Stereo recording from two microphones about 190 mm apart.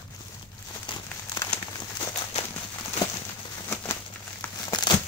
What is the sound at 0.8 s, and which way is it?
Crumpling, 20° left (ahead or behind).